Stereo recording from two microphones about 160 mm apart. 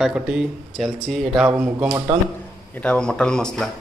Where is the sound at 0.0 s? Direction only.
5° right (ahead or behind).